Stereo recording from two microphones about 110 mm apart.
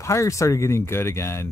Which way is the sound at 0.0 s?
25° left (ahead or behind).